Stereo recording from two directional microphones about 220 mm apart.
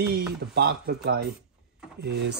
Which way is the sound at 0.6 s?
45° right (ahead or behind).